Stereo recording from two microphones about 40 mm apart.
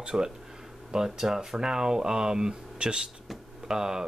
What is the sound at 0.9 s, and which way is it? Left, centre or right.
Speech, centre.